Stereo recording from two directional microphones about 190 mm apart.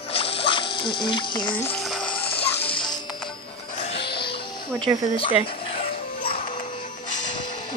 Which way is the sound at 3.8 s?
30° left (ahead or behind).